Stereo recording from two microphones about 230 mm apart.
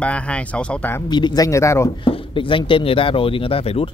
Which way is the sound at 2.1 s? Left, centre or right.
Left.